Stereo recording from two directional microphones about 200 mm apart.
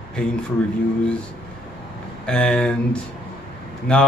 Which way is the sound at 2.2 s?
5° left (ahead or behind).